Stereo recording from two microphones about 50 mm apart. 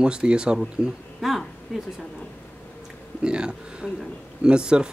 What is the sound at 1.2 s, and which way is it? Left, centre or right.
Speech, centre.